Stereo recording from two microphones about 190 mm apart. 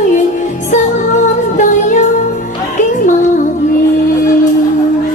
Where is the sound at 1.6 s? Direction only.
40° left (ahead or behind).